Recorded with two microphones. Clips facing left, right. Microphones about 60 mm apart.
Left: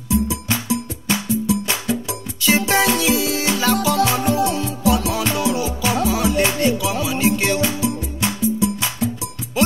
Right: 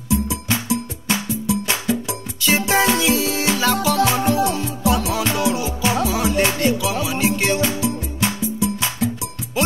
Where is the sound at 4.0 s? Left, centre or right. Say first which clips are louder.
Even; right.